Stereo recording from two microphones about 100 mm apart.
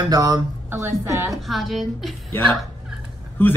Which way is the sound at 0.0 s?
40° right (ahead or behind).